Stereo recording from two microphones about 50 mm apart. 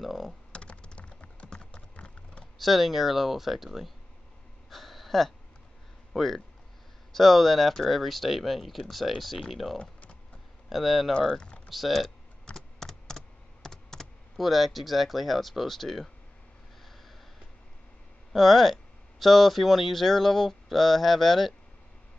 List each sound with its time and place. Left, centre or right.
0.0 s typing: centre
0.5 s computer keyboard: left
2.6 s speech: centre
4.6 s a sound: centre
6.1 s speech: centre
11.1 s speech: centre
11.7 s speech: centre
12.4 s computer keyboard: centre
18.3 s speech: centre